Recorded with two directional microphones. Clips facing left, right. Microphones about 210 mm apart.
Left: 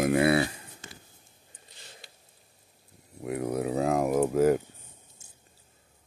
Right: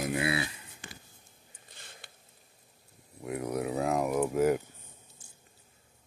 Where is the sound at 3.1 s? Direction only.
25° left (ahead or behind).